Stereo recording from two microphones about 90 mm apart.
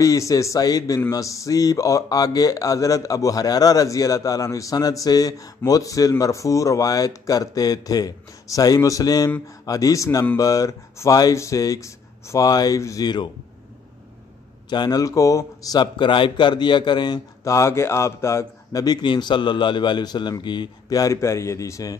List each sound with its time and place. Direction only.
0.0 s speech: 35° left (ahead or behind)
14.7 s speech: 50° left (ahead or behind)
15.8 s a man's voice: 65° left (ahead or behind)
17.5 s speech: 30° left (ahead or behind); by 20.7 s 55° left (ahead or behind)
20.9 s speech: 40° left (ahead or behind)